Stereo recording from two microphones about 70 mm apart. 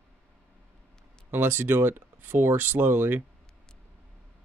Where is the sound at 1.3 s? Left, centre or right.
Right.